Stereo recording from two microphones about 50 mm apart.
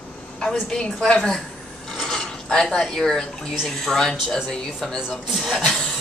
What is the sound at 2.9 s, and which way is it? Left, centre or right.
Speech, centre.